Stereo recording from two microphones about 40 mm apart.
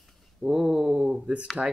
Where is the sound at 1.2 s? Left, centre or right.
Right.